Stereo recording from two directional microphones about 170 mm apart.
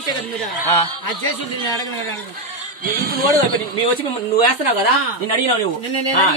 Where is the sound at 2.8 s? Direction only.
55° right (ahead or behind).